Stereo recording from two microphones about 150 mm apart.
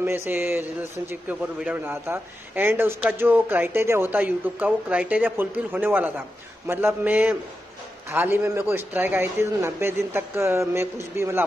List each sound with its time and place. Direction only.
0.0 s a man's voice: 15° right (ahead or behind)